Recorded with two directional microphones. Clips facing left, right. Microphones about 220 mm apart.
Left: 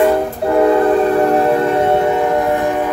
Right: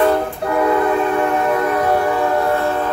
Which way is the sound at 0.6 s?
30° left (ahead or behind).